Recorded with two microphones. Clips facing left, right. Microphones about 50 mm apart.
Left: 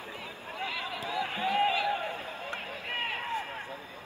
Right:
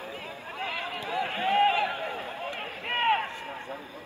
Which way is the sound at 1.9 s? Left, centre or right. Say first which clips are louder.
Left 1 dB; right.